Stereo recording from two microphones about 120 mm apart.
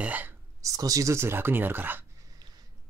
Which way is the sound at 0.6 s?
30° right (ahead or behind).